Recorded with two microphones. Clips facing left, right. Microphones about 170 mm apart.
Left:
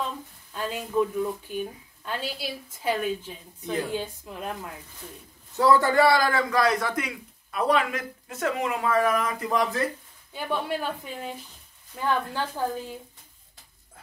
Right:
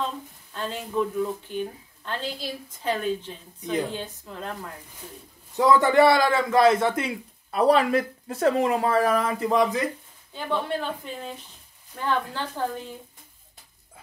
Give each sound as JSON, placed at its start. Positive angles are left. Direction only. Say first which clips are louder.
{"t": 0.5, "sound": "a woman's voice", "louder": "left 1 dB", "side_deg": 10}
{"t": 5.6, "sound": "a man's voice", "louder": "right 2 dB", "side_deg": -20}
{"t": 10.3, "sound": "a woman's voice", "louder": "right 1 dB", "side_deg": 10}